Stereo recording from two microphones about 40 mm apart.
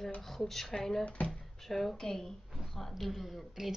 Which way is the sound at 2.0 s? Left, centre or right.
Centre.